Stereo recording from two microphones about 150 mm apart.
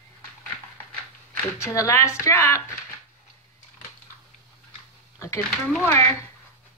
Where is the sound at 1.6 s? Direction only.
20° left (ahead or behind).